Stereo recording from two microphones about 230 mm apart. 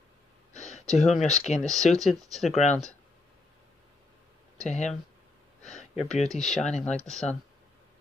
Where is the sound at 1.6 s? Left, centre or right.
Centre.